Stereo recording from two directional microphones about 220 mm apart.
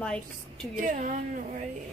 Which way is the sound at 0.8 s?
35° right (ahead or behind).